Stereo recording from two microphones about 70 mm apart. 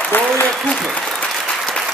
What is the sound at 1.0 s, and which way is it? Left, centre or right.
Applause, centre.